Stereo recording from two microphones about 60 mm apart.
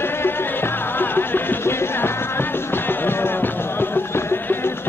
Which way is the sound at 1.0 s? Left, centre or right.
Left.